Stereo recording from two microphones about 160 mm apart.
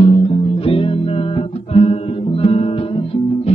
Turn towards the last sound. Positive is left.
turn(degrees=35)  # may be behind; listen again after turning